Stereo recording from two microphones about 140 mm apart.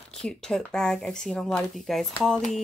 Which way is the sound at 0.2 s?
5° left (ahead or behind).